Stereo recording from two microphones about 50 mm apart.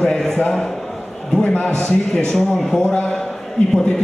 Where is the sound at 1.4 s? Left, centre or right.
Left.